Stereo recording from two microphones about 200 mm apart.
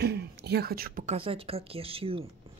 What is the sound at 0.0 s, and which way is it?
Whispering, 55° right (ahead or behind).